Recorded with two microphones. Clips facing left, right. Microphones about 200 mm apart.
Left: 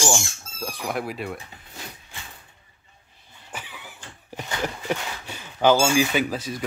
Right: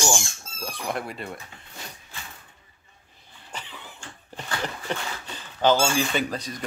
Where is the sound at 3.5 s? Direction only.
10° left (ahead or behind).